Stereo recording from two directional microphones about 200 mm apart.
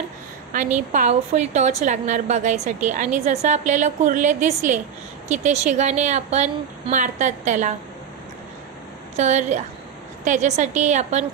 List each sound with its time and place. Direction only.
0.5 s a woman's voice: 35° right (ahead or behind)
9.1 s a woman's voice: 35° right (ahead or behind)